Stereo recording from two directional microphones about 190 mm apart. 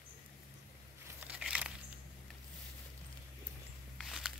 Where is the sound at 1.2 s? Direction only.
5° right (ahead or behind).